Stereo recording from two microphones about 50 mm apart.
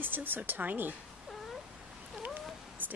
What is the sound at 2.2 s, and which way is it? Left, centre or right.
Cat, right.